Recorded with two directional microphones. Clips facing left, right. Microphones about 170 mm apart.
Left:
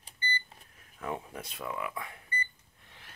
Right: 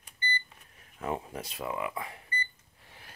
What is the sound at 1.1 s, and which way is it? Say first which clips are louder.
Speech: right 3 dB; 5° right (ahead or behind).